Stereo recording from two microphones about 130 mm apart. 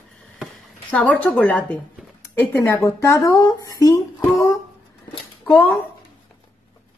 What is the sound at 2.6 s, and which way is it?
Speech, 25° left (ahead or behind).